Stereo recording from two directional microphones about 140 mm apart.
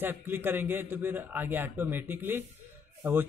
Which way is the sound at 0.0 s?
15° right (ahead or behind).